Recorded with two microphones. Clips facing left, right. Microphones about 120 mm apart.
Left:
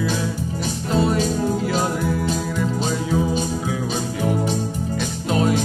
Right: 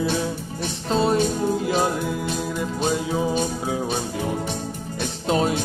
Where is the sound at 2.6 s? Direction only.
20° right (ahead or behind).